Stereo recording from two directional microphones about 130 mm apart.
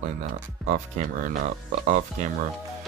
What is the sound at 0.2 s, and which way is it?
Speech, 65° right (ahead or behind).